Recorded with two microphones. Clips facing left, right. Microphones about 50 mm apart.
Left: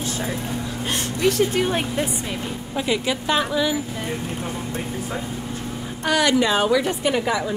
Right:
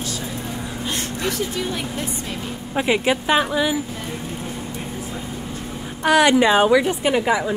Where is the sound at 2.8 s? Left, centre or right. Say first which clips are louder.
Right 4 dB; right.